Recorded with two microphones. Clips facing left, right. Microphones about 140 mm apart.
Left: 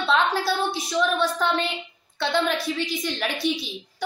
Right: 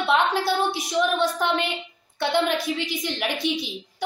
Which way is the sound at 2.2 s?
15° right (ahead or behind).